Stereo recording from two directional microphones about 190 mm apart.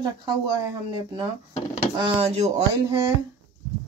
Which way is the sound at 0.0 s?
25° right (ahead or behind).